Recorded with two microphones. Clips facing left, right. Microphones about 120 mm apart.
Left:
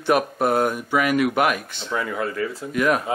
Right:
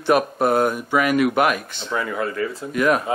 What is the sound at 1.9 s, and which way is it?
Speech, 40° right (ahead or behind).